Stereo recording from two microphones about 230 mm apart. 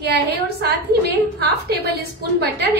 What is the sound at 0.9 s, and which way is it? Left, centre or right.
Speech, right.